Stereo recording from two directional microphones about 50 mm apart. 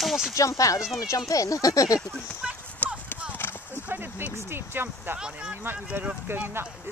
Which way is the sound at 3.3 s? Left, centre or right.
Left.